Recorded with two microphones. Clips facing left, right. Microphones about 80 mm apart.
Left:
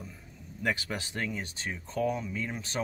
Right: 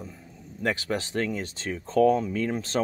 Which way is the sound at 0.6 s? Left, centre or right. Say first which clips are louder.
Right 5 dB; right.